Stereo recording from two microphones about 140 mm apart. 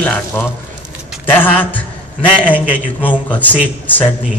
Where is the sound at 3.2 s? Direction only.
10° left (ahead or behind).